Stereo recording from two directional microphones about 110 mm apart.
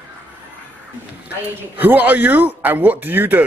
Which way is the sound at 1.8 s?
15° right (ahead or behind).